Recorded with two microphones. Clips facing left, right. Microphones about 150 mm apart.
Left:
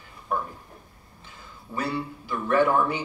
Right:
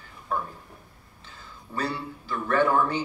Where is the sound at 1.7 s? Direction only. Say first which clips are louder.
Left 1 dB; 10° left (ahead or behind).